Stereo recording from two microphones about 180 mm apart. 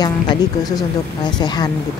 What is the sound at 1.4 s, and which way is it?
Speech, 25° left (ahead or behind).